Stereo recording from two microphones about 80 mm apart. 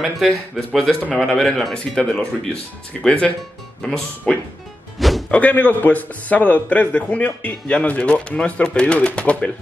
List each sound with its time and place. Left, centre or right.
0.0 s a man's voice: centre
4.9 s music: centre
5.3 s a man's voice: centre